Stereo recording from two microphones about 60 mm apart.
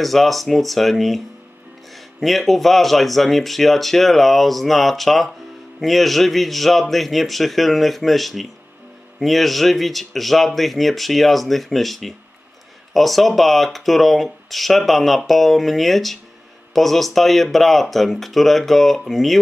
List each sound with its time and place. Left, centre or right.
0.0 s speech: centre